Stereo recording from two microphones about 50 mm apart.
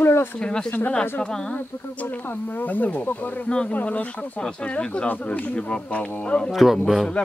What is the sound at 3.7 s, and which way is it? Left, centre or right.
Speech, left.